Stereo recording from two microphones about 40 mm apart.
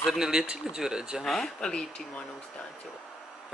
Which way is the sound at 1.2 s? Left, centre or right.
Centre.